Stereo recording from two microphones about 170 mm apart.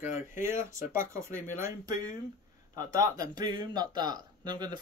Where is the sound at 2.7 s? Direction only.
20° right (ahead or behind).